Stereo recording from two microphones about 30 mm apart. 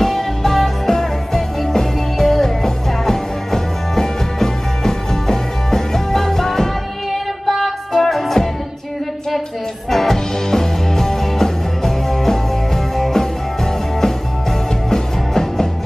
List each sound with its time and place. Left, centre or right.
0.0 s music: centre
7.1 s music: centre
9.8 s music: centre
14.9 s music: centre